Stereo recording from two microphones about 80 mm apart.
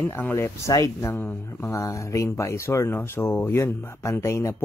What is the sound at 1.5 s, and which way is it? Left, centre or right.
Speech, left.